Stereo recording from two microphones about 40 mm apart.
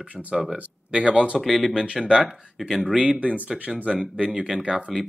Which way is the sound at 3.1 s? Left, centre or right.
Right.